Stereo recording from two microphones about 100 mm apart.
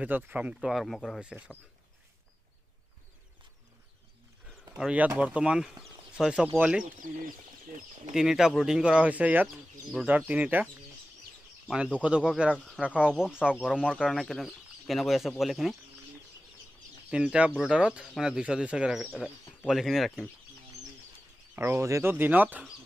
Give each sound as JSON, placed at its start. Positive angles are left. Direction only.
{"t": 0.0, "sound": "speech", "side_deg": -15}
{"t": 4.5, "sound": "speech", "side_deg": -10}
{"t": 8.1, "sound": "speech", "side_deg": -5}
{"t": 12.0, "sound": "speech", "side_deg": -10}
{"t": 17.1, "sound": "speech", "side_deg": -10}
{"t": 21.5, "sound": "speech", "side_deg": -25}